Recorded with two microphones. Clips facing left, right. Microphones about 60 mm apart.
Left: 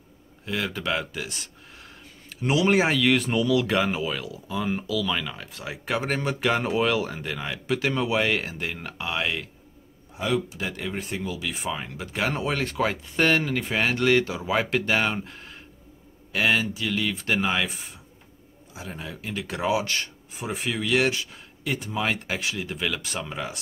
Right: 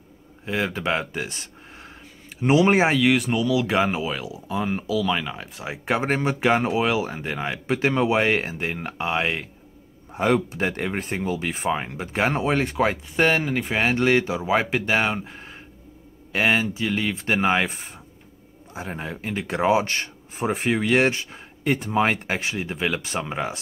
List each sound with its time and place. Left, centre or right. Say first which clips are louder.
0.5 s speech: right 3 dB; right
3.0 s speech: right 2 dB; centre
3.7 s speech: right 2 dB; right
4.9 s speech: right 6 dB; right
10.1 s a man's voice: right 5 dB; right